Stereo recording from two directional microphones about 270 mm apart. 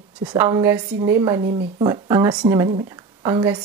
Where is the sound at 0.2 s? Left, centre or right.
Centre.